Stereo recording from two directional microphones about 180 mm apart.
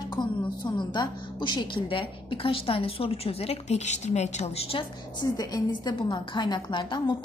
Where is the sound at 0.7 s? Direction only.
25° left (ahead or behind).